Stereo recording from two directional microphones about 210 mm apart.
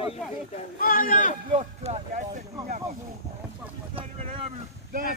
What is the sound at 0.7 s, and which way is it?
Speech, 40° left (ahead or behind).